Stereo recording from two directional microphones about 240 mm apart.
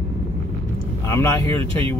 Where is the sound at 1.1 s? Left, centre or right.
Centre.